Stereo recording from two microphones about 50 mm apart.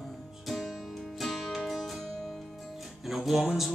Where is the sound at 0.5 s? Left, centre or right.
Centre.